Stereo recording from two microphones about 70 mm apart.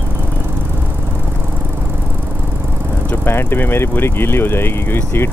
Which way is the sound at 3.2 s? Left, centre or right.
Left.